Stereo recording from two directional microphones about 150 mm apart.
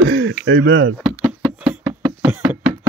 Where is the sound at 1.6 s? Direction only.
10° right (ahead or behind).